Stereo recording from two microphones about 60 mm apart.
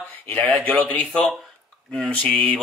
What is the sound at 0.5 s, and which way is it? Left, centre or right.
Speech, left.